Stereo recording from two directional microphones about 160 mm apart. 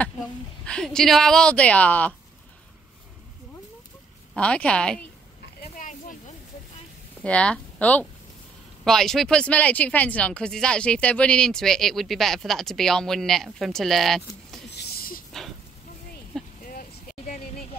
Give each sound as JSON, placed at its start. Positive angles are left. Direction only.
{"t": 0.7, "sound": "speech", "side_deg": 5}
{"t": 4.4, "sound": "speech", "side_deg": 5}
{"t": 5.6, "sound": "a sound", "side_deg": 55}
{"t": 7.2, "sound": "speech", "side_deg": 5}
{"t": 14.8, "sound": "a sound", "side_deg": 75}
{"t": 16.6, "sound": "vehicle", "side_deg": 60}